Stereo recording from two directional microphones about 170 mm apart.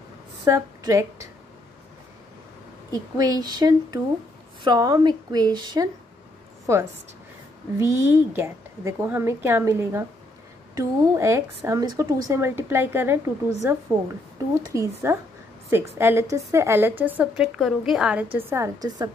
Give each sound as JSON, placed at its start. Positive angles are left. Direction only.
{"t": 0.5, "sound": "a woman's voice", "side_deg": -15}
{"t": 2.9, "sound": "speech", "side_deg": -20}
{"t": 7.8, "sound": "a woman's voice", "side_deg": -15}